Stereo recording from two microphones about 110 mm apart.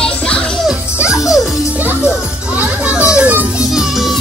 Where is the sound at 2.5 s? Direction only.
10° right (ahead or behind).